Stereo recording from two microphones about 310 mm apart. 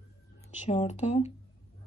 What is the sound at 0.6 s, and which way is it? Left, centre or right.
Speech, left.